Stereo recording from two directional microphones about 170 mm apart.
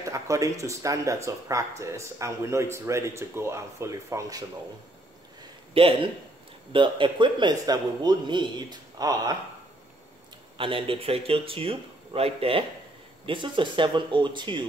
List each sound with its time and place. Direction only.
0.0 s speech: 20° right (ahead or behind)
5.8 s a man's voice: 30° right (ahead or behind)
10.6 s a man's voice: 30° right (ahead or behind)